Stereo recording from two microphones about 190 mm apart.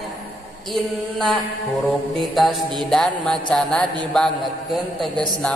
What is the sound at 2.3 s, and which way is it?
Music, centre (ahead or behind).